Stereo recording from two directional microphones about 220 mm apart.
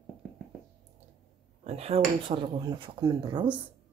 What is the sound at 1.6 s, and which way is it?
Speech, 30° right (ahead or behind).